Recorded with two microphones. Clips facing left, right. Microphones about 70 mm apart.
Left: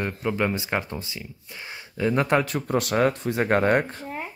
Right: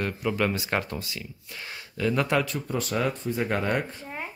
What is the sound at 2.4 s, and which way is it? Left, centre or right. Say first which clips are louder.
Speech: left 5 dB; left.